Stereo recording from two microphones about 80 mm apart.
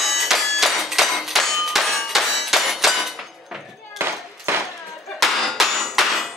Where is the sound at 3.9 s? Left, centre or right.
Right.